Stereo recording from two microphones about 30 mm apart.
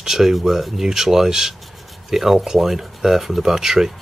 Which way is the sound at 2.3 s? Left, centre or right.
Right.